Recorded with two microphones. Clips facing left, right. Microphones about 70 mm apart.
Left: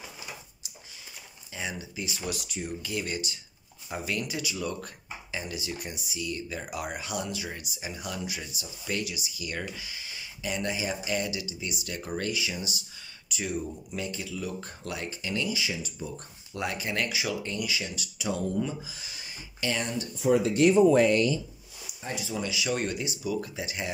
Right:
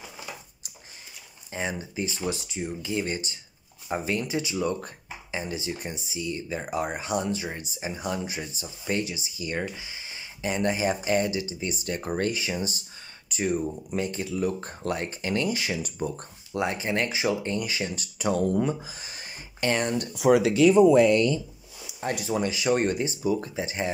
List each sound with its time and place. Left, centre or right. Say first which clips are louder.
1.5 s speech: right 5 dB; right
16.5 s speech: right 4 dB; right
20.2 s speech: right 4 dB; right
21.8 s speech: right 6 dB; right